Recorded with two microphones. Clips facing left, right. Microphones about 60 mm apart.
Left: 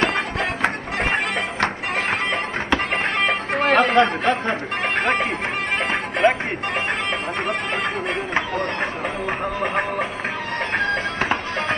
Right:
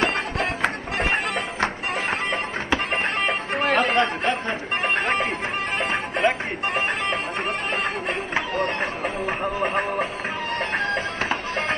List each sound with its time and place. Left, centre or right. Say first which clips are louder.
2.9 s music: left 3 dB; left
3.6 s chatter: left 4 dB; left
5.0 s music: left 2 dB; left